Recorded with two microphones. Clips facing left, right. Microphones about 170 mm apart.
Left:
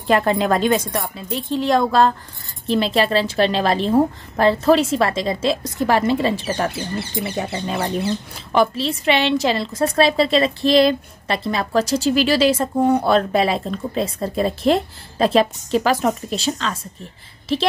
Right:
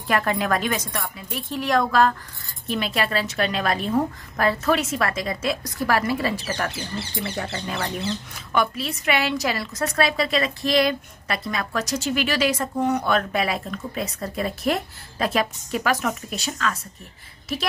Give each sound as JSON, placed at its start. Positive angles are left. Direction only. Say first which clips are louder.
{"t": 0.0, "sound": "a woman's voice", "louder": "left 6 dB", "side_deg": 25}